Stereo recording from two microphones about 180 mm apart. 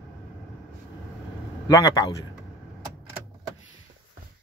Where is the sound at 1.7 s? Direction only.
20° left (ahead or behind).